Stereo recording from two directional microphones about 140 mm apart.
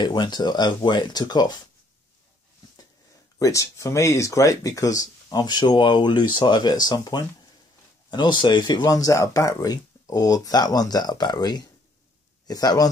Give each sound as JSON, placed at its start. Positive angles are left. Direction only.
{"t": 0.0, "sound": "speech", "side_deg": 30}
{"t": 3.3, "sound": "speech", "side_deg": 25}